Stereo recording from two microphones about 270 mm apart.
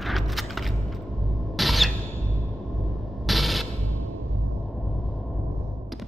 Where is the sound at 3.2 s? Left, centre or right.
Centre.